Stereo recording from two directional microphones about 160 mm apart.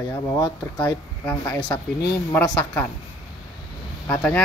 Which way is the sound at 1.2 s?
10° left (ahead or behind).